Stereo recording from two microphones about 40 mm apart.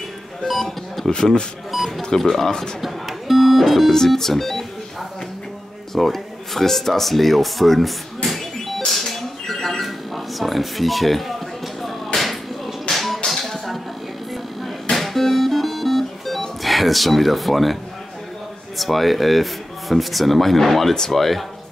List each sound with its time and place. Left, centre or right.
0.5 s speech: centre
1.1 s speech: left
1.9 s speech: centre
2.8 s music: centre
5.9 s speech: centre
8.3 s a sound: centre
12.9 s music: centre
14.9 s music: centre
18.8 s speech: centre